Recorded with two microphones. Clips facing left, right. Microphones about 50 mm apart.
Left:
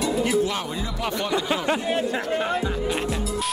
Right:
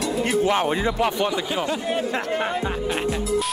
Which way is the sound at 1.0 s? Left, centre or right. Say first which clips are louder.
Left 2 dB; right.